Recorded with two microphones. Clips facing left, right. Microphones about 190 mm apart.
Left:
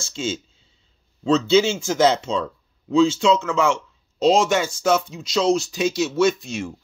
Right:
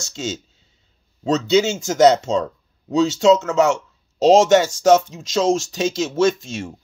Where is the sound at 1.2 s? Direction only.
40° right (ahead or behind).